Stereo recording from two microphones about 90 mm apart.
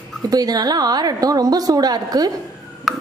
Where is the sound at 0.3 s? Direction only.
45° right (ahead or behind).